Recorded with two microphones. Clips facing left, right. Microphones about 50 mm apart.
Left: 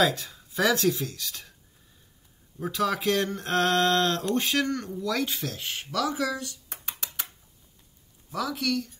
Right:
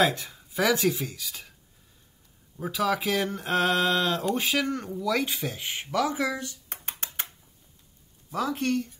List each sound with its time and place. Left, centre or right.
0.0 s speech: right; by 1.5 s centre
2.6 s speech: centre; by 6.6 s right
6.7 s typing: right
8.3 s speech: right